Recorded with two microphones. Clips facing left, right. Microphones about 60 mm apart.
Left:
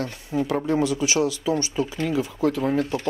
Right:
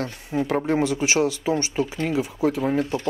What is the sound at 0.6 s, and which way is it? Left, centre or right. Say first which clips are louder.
Speech: right 1 dB; right.